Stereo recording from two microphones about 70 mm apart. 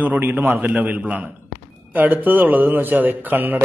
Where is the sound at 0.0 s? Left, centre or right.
Right.